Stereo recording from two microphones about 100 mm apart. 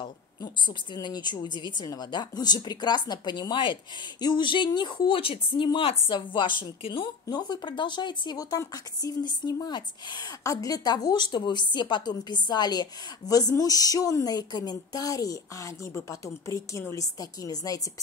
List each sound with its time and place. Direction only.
0.0 s a woman's voice: 50° left (ahead or behind)
7.2 s speech: 45° left (ahead or behind)
10.4 s a woman's voice: 35° left (ahead or behind)